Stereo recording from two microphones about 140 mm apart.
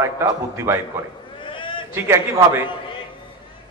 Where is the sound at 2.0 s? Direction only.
20° right (ahead or behind).